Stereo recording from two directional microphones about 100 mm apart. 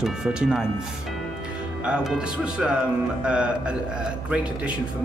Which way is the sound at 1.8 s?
10° right (ahead or behind).